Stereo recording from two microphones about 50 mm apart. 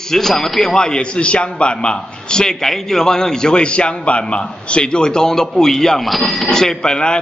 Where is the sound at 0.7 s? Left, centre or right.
Centre.